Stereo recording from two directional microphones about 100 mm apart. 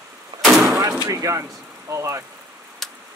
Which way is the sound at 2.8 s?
Centre (ahead or behind).